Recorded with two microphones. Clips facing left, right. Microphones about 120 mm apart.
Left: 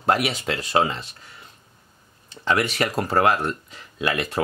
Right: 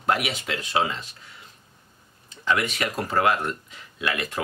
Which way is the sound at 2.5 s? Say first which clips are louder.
Left 3 dB; 35° left (ahead or behind).